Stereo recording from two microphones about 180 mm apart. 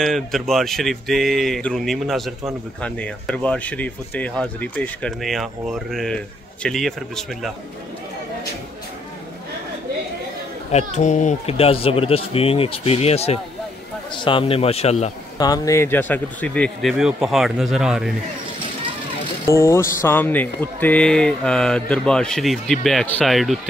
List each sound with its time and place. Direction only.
0.0 s speech: centre (ahead or behind)
10.7 s speech: 40° left (ahead or behind)
15.3 s speech: 20° left (ahead or behind); by 18.1 s 5° right (ahead or behind)
19.4 s speech: 15° left (ahead or behind); by 23.7 s centre (ahead or behind)